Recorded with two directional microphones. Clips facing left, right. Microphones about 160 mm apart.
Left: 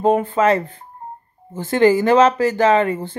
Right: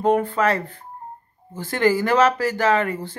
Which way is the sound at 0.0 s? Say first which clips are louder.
Left 3 dB; 20° left (ahead or behind).